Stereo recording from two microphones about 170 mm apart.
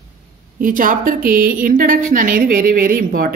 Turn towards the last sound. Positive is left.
turn(degrees=-55)  # may be behind; listen again after turning